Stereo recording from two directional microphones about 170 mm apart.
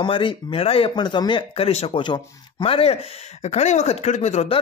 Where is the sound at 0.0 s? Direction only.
30° left (ahead or behind).